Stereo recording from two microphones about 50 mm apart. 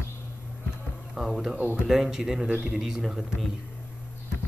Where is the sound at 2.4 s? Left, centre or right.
Right.